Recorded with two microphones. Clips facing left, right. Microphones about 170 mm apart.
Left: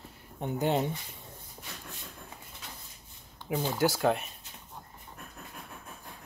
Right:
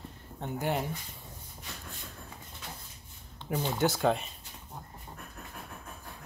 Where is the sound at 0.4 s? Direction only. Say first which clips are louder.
Left 4 dB; 20° left (ahead or behind).